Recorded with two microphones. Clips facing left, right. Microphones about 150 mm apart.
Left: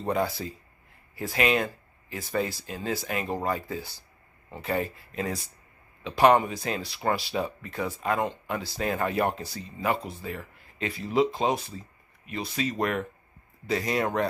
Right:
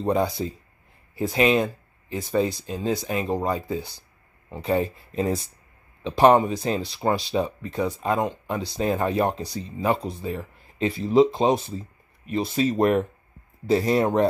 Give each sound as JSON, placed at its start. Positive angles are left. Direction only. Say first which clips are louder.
{"t": 0.0, "sound": "speech", "louder": "right 5 dB", "side_deg": -20}
{"t": 6.0, "sound": "speech", "louder": "right 4 dB", "side_deg": -25}